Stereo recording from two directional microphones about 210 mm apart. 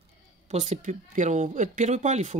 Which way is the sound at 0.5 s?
35° right (ahead or behind).